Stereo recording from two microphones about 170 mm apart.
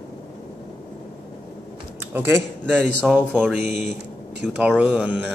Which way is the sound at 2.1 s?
15° right (ahead or behind).